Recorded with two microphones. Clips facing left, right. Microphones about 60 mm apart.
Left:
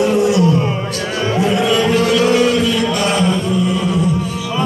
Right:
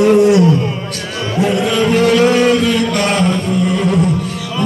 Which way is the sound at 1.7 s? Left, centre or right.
Right.